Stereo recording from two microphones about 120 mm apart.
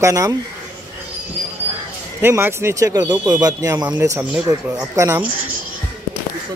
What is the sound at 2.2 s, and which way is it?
Speech, 20° right (ahead or behind).